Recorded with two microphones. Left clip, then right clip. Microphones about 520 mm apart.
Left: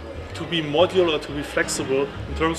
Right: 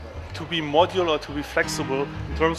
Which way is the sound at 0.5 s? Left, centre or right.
Right.